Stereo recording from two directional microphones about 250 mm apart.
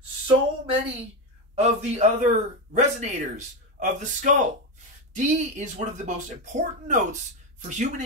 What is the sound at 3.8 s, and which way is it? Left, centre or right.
Speech, right.